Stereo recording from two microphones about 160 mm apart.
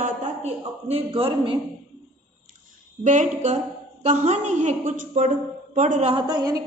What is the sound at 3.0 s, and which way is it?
A woman's voice, 50° right (ahead or behind).